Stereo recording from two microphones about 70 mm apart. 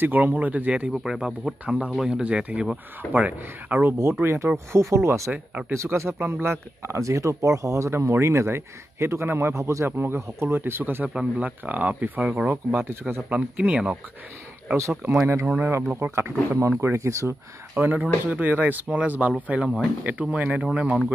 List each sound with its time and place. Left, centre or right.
0.0 s speech: right
0.9 s speech: centre
1.7 s speech: centre
4.0 s speech: right
5.3 s speech: right
5.7 s speech: right; by 13.9 s centre
14.8 s speech: right
15.6 s speech: right
16.8 s speech: right
17.7 s speech: right